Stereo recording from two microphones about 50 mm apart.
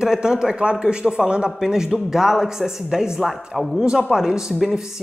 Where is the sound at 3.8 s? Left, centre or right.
Centre.